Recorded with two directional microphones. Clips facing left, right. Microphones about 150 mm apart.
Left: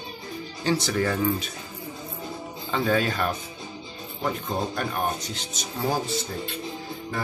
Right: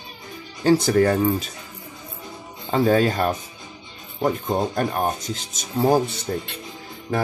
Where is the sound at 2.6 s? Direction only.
40° right (ahead or behind).